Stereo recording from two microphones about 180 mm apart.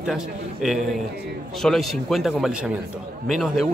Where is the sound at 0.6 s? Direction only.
Centre (ahead or behind).